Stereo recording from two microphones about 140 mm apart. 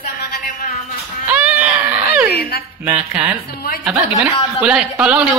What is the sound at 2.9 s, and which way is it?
A woman's voice, 10° right (ahead or behind).